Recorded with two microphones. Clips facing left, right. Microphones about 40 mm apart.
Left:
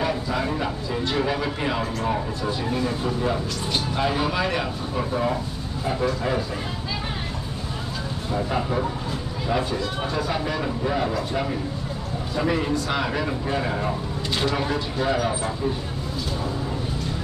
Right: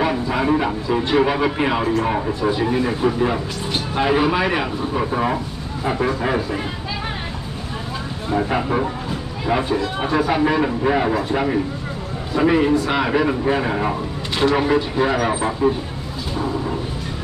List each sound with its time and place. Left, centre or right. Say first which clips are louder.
0.0 s speech: right 5 dB; right
8.3 s speech: right 6 dB; right